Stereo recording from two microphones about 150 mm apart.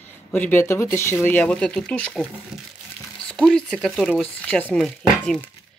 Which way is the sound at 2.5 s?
5° right (ahead or behind).